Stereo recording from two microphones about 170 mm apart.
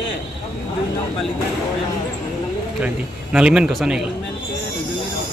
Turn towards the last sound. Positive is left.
turn(degrees=-5)  # may be behind; listen again after turning